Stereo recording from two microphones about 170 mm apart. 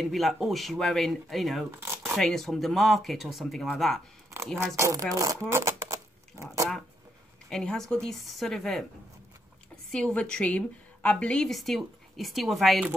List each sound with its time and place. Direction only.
0.0 s a woman's voice: centre (ahead or behind)
4.7 s speech: 20° right (ahead or behind)
5.5 s shuffling cards: 15° right (ahead or behind)
7.4 s a woman's voice: 5° left (ahead or behind)
9.8 s a woman's voice: 5° left (ahead or behind)